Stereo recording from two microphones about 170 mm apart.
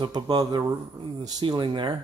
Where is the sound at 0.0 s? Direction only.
25° right (ahead or behind).